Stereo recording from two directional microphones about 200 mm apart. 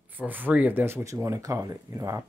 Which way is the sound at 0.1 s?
10° right (ahead or behind).